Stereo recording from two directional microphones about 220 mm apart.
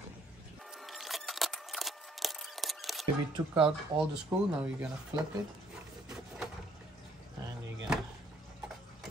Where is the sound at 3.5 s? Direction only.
5° right (ahead or behind).